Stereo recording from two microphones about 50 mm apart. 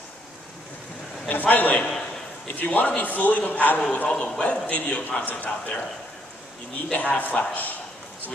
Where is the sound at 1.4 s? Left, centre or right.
Left.